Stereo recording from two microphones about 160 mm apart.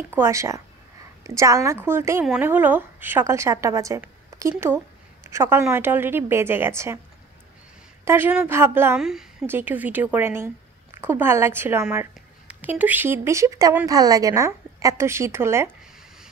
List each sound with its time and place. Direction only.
0.1 s a woman's voice: 15° right (ahead or behind)
8.0 s a woman's voice: 15° right (ahead or behind)